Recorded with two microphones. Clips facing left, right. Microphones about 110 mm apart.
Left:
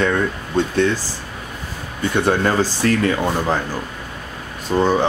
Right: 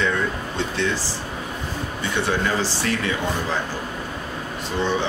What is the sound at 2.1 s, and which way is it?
Speech, 45° left (ahead or behind).